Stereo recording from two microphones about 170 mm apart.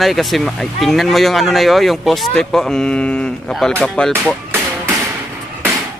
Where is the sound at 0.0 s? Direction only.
Centre (ahead or behind).